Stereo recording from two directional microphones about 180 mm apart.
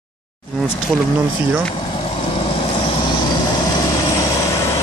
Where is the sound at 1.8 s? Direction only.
30° left (ahead or behind).